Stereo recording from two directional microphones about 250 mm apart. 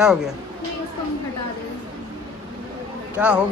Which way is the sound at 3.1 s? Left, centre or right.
Centre.